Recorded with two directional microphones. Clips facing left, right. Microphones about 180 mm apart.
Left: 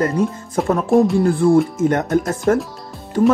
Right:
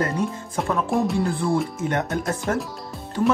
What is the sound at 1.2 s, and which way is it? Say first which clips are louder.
Speech: left 9 dB; 50° left (ahead or behind).